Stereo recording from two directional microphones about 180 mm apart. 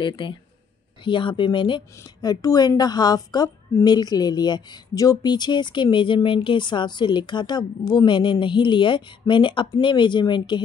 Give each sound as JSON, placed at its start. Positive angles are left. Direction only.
{"t": 0.0, "sound": "a woman's voice", "side_deg": 25}